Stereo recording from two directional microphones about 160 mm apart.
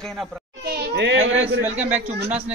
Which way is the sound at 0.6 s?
90° right.